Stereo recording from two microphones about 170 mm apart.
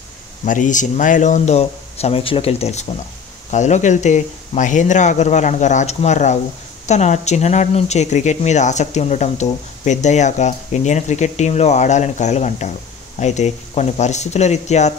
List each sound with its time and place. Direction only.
0.5 s speech: 50° left (ahead or behind)